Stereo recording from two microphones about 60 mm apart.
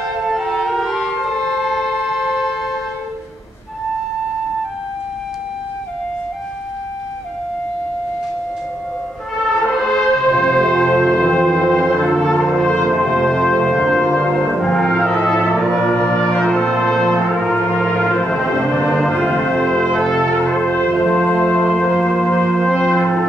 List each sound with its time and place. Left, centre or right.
0.2 s music: centre
9.5 s music: centre
11.0 s music: centre
11.2 s music: centre
11.8 s music: centre
12.1 s music: centre
12.5 s brass instrument: centre
15.4 s brass instrument: centre
15.9 s brass instrument: centre
18.0 s music: centre
19.9 s brass instrument: centre
20.6 s brass instrument: left
21.5 s music: centre
22.2 s brass instrument: centre